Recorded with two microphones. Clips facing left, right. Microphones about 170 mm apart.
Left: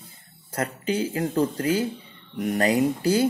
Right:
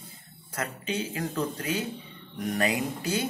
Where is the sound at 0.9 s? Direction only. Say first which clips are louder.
Left 6 dB; 30° left (ahead or behind).